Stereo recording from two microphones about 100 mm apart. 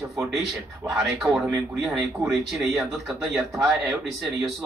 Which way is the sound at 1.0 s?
5° right (ahead or behind).